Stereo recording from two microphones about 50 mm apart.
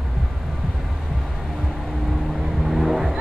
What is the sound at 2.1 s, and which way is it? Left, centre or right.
Vehicle, centre.